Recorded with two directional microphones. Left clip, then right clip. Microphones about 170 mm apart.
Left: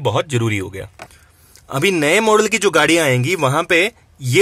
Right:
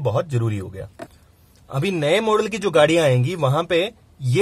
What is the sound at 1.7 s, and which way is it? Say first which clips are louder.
Speech: left 5 dB; 20° left (ahead or behind).